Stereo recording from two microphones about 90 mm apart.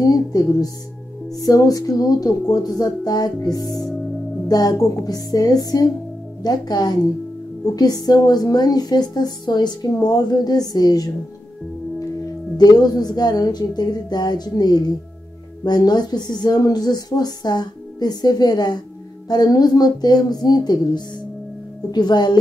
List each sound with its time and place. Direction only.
0.1 s a woman's voice: 45° left (ahead or behind)
3.7 s music: centre (ahead or behind)
4.5 s a woman's voice: 45° left (ahead or behind)
12.5 s a woman's voice: 50° left (ahead or behind)